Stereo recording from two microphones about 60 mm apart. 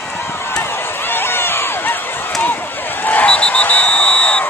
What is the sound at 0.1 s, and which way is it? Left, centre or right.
Run, left.